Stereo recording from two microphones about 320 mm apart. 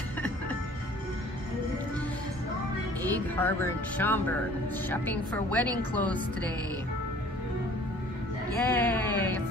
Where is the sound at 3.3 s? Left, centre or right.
Centre.